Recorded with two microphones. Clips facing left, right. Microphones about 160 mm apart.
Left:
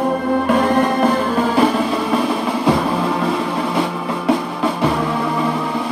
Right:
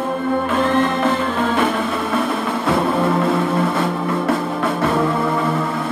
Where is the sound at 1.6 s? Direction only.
35° left (ahead or behind).